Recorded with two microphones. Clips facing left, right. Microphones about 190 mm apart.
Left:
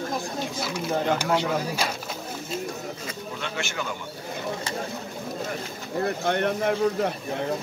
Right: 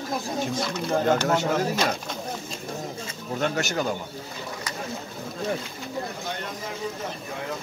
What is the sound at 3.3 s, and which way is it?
Speech, 40° right (ahead or behind).